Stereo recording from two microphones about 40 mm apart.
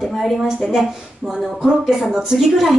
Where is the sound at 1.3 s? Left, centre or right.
Centre.